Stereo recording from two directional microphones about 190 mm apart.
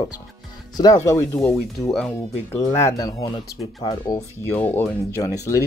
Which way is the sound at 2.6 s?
20° left (ahead or behind).